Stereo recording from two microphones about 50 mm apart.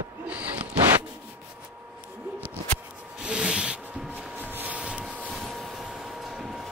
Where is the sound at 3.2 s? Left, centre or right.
Centre.